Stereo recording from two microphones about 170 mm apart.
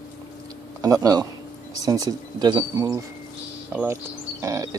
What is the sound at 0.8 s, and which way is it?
Speech, 20° right (ahead or behind).